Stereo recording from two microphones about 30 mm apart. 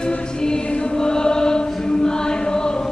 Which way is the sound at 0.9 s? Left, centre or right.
Left.